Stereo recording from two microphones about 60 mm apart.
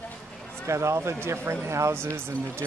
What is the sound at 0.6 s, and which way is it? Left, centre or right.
Speech, right.